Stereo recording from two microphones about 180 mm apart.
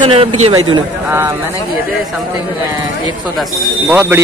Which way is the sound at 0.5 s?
20° right (ahead or behind).